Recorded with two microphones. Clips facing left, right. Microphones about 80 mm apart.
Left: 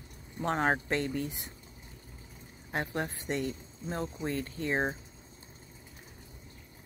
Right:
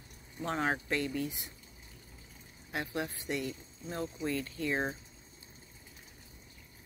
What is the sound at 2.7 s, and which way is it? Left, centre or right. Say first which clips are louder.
Speech: left 3 dB; left.